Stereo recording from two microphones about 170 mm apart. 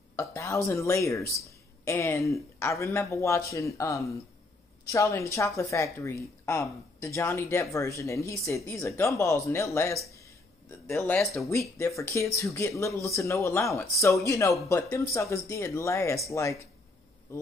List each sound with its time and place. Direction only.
0.1 s speech: 15° left (ahead or behind)
10.0 s a sound: 15° left (ahead or behind)
10.9 s speech: 15° left (ahead or behind)